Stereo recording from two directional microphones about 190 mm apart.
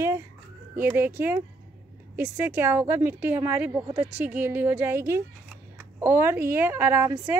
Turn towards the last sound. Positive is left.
turn(degrees=-10)  # may be behind; listen again after turning